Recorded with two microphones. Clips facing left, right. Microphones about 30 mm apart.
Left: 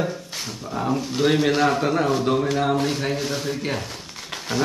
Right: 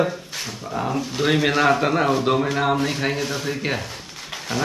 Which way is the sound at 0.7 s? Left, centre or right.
Centre.